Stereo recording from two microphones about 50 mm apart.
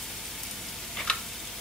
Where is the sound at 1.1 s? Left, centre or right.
Centre.